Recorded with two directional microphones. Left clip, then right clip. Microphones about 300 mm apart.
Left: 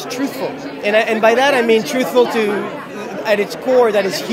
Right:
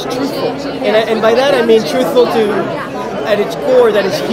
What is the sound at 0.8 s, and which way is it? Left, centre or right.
Speech, left.